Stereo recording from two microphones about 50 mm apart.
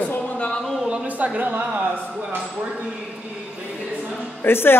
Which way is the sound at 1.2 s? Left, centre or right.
Right.